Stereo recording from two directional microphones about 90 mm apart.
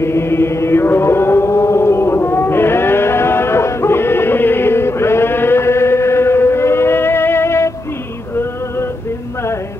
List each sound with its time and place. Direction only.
0.0 s chant: 30° left (ahead or behind)